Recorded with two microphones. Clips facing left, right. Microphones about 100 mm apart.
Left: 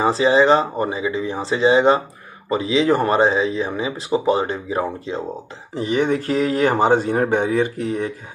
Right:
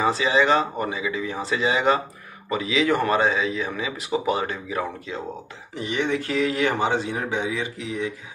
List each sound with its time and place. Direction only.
0.0 s a man's voice: 30° left (ahead or behind); by 8.1 s 50° left (ahead or behind)